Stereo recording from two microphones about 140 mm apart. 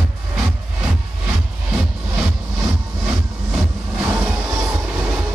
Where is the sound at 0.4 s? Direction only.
5° right (ahead or behind).